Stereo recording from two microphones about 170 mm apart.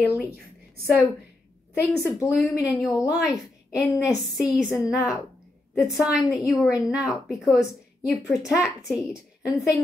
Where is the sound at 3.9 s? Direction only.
5° right (ahead or behind).